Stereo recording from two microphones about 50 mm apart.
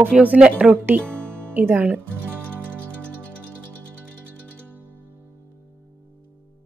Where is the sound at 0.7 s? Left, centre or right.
Right.